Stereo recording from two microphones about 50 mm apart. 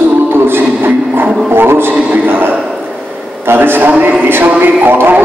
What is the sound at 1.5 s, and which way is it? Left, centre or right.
A man's voice, right.